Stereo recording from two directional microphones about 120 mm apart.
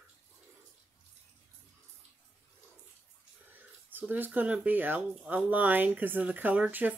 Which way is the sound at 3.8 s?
15° right (ahead or behind).